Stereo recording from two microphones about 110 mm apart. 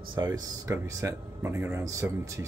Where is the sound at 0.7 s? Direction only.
30° right (ahead or behind).